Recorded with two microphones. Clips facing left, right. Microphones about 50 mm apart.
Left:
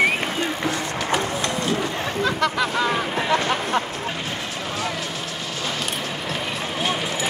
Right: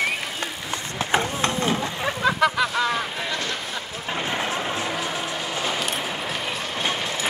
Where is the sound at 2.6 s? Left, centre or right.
Centre.